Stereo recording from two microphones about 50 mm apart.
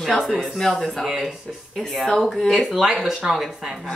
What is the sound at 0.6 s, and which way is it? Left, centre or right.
Speech, centre.